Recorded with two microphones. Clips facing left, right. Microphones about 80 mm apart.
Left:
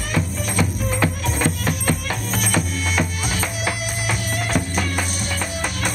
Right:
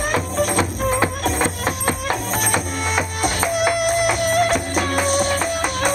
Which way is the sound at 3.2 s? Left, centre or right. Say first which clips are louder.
Right 6 dB; right.